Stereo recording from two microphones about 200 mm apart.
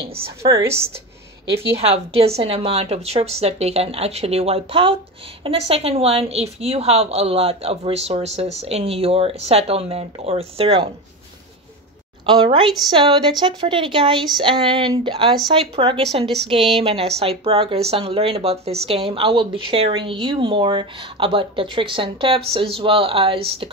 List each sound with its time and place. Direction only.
0.5 s a woman's voice: 15° right (ahead or behind)
1.8 s a woman's voice: 30° right (ahead or behind)
12.3 s speech: 25° right (ahead or behind)